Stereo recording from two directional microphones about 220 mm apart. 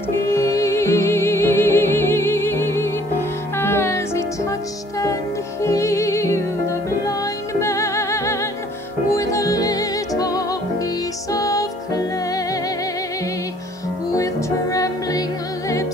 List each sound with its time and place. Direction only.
0.2 s music: 10° left (ahead or behind)
5.6 s music: 15° left (ahead or behind)
14.1 s music: 15° left (ahead or behind)